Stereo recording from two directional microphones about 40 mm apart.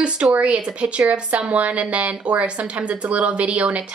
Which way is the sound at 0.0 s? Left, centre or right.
Right.